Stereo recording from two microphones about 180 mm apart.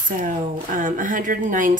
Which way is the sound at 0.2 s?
45° right (ahead or behind).